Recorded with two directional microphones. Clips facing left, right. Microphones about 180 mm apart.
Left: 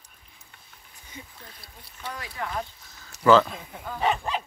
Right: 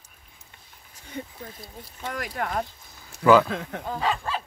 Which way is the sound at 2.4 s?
60° right (ahead or behind).